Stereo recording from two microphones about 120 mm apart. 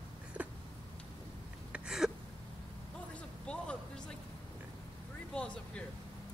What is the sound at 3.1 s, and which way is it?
Vehicle, 10° left (ahead or behind).